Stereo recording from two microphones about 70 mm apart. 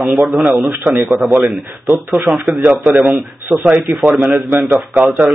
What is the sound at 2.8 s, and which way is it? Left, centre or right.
A man's voice, right.